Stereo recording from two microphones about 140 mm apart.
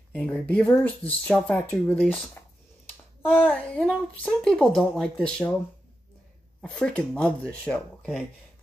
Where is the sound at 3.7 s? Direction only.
10° left (ahead or behind).